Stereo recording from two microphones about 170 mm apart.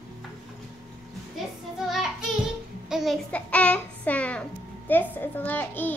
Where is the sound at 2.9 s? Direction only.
Centre (ahead or behind).